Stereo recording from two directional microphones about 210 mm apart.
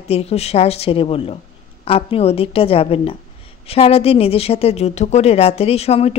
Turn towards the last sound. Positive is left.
turn(degrees=30)  # may be behind; listen again after turning